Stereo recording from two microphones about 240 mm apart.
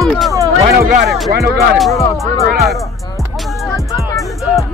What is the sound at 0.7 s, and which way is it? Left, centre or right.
Speech, right.